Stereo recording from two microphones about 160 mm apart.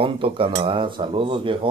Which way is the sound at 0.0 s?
35° right (ahead or behind).